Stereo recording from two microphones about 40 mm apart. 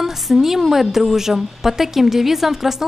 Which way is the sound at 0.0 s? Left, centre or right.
Centre.